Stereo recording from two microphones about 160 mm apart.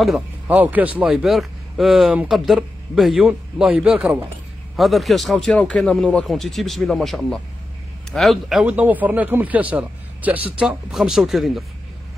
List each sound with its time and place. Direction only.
0.0 s speech: 5° right (ahead or behind)